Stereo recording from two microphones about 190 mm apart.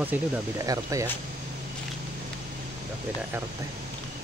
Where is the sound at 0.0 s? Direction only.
15° right (ahead or behind).